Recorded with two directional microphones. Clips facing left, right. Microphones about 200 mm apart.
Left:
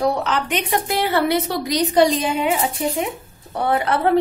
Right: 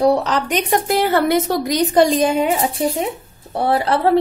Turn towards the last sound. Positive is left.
turn(degrees=-30)  # may be behind; listen again after turning